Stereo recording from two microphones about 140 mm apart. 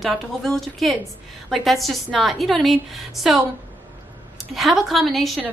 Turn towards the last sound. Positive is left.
turn(degrees=0)  # may be behind; listen again after turning